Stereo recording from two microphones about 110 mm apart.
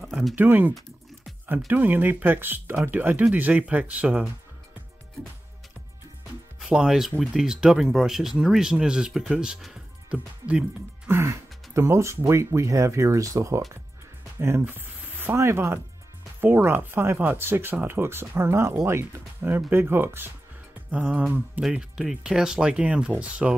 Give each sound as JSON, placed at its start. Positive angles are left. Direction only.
{"t": 0.0, "sound": "a sound", "side_deg": -5}
{"t": 0.4, "sound": "speech", "side_deg": -15}
{"t": 6.7, "sound": "speech", "side_deg": -5}
{"t": 11.1, "sound": "speech", "side_deg": -25}